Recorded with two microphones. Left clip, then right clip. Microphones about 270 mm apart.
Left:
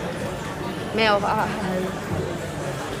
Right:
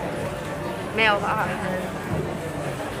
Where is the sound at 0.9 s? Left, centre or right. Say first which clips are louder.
Left 1 dB; centre.